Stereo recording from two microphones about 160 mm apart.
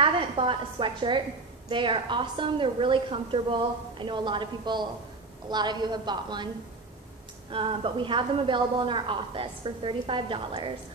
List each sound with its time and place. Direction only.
0.0 s a woman's voice: 35° right (ahead or behind)
7.5 s a woman's voice: 35° right (ahead or behind)